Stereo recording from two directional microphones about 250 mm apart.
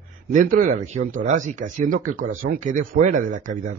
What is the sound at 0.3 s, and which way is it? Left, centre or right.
Speech, right.